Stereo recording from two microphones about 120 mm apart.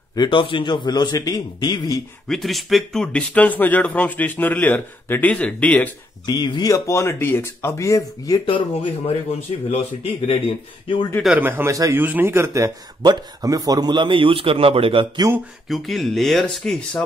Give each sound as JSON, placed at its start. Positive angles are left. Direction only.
{"t": 0.1, "sound": "a man's voice", "side_deg": 40}
{"t": 2.2, "sound": "speech", "side_deg": 0}
{"t": 6.2, "sound": "speech", "side_deg": 35}
{"t": 8.5, "sound": "speech", "side_deg": 45}
{"t": 11.3, "sound": "a man's voice", "side_deg": -15}
{"t": 11.7, "sound": "a man's voice", "side_deg": -30}
{"t": 12.0, "sound": "speech", "side_deg": -15}
{"t": 15.7, "sound": "speech", "side_deg": 0}